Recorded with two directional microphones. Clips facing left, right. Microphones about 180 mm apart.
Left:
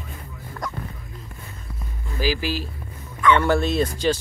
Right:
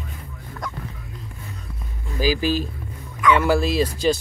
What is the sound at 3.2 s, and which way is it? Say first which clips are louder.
Speech: even; 5° right (ahead or behind).